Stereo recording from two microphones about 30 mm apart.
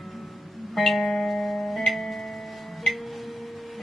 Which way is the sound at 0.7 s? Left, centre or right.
Centre.